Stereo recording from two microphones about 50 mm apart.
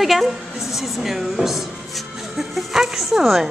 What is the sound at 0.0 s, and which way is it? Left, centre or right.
Speech, centre.